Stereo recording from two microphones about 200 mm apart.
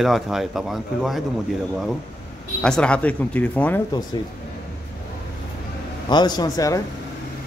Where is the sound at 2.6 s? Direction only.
5° left (ahead or behind).